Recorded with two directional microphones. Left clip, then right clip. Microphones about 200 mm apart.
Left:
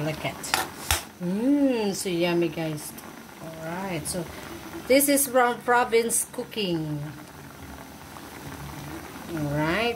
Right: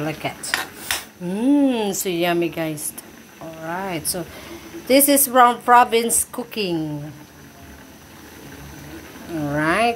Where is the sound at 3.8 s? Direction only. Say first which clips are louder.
Right 5 dB; 20° right (ahead or behind).